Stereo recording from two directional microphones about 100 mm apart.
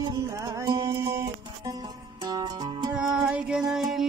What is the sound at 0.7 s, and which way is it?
Music, 30° right (ahead or behind).